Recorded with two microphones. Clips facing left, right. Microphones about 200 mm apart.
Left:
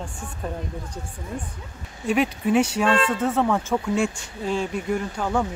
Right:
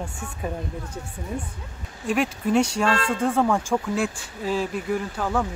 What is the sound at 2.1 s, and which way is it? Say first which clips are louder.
Speech: left 2 dB; centre (ahead or behind).